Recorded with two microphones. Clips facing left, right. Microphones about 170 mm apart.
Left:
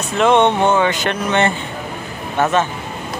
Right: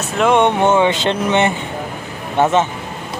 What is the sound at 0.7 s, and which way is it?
Speech, 25° right (ahead or behind).